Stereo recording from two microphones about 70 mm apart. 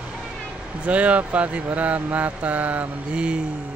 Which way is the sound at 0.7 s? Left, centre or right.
Centre.